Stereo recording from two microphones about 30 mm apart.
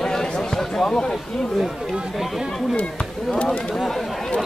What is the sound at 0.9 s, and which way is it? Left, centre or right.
Speech, left.